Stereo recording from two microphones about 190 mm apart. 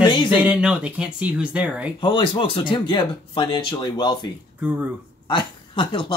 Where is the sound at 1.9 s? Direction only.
25° left (ahead or behind).